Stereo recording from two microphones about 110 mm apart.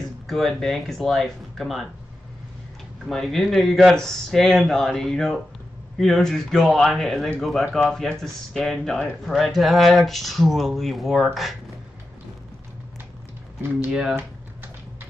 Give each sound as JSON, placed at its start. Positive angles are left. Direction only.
{"t": 0.3, "sound": "speech", "side_deg": 0}
{"t": 3.1, "sound": "speech", "side_deg": 0}